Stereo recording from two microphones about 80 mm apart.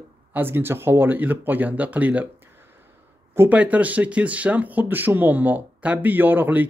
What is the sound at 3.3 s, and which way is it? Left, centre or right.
Speech, right.